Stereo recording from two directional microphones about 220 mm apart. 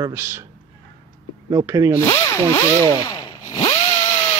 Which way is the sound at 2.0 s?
15° left (ahead or behind).